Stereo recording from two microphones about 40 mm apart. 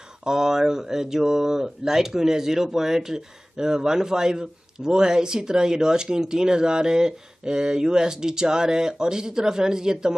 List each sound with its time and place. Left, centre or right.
0.2 s speech: centre